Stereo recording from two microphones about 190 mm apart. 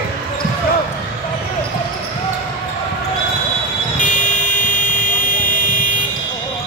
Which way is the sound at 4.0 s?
40° left (ahead or behind).